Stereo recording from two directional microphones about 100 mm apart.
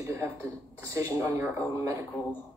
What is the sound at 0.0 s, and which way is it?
A man's voice, 30° right (ahead or behind).